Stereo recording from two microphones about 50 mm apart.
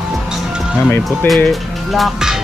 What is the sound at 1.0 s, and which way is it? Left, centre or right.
Speech, centre.